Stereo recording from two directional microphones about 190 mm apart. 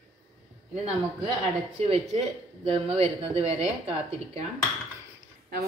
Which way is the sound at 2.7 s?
35° right (ahead or behind).